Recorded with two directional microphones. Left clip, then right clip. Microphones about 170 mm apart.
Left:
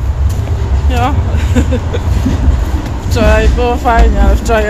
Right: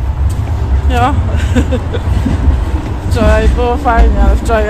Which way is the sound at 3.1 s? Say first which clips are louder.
Left 1 dB; 10° left (ahead or behind).